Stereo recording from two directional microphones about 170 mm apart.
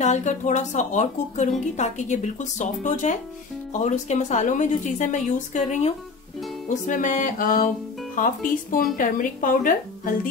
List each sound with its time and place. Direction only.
0.0 s a woman's voice: 45° left (ahead or behind)